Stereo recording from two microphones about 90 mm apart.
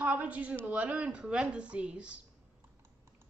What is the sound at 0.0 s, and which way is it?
A woman's voice, 15° right (ahead or behind).